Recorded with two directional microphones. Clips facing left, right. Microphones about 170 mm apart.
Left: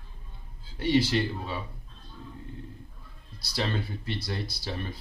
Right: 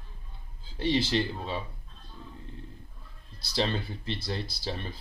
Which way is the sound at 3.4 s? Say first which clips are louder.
Right 1 dB; 25° right (ahead or behind).